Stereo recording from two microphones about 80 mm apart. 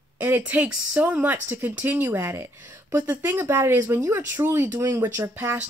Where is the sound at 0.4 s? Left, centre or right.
Centre.